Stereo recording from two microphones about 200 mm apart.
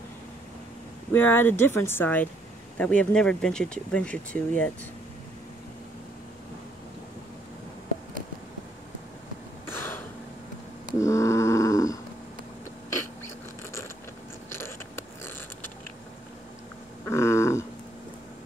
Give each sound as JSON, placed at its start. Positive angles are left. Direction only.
{"t": 1.1, "sound": "speech", "side_deg": 10}
{"t": 9.7, "sound": "throat clearing", "side_deg": 10}
{"t": 11.0, "sound": "dog", "side_deg": 15}
{"t": 14.6, "sound": "biting", "side_deg": 10}
{"t": 17.0, "sound": "a sound", "side_deg": 15}